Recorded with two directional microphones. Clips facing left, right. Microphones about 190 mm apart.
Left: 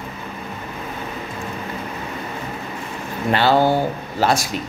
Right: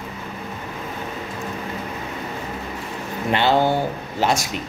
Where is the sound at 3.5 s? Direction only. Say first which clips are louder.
Left 3 dB; 10° left (ahead or behind).